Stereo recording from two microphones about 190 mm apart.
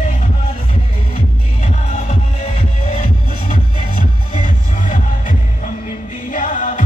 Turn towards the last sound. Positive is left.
turn(degrees=45)  # may be behind; listen again after turning